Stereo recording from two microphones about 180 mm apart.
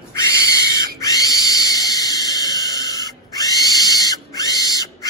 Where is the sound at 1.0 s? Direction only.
20° left (ahead or behind).